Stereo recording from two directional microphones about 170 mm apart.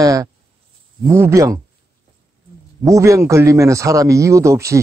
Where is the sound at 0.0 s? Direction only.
20° right (ahead or behind).